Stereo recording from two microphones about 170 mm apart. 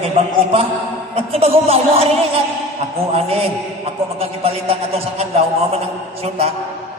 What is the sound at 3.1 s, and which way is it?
A man's voice, 35° right (ahead or behind).